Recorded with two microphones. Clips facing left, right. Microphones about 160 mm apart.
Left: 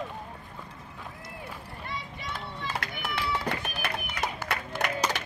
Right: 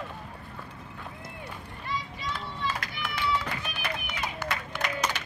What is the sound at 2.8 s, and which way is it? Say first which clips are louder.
Run: even; 55° left (ahead or behind).